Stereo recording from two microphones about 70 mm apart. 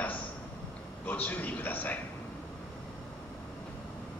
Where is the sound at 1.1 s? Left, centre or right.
Left.